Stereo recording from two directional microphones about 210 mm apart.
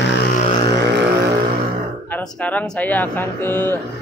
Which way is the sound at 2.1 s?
5° left (ahead or behind).